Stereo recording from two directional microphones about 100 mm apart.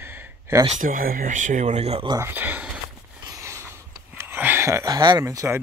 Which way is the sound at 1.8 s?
90° right.